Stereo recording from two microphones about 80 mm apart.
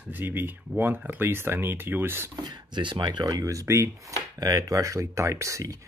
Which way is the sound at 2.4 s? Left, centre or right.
Right.